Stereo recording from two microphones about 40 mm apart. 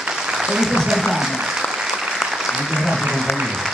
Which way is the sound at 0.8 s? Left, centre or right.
Centre.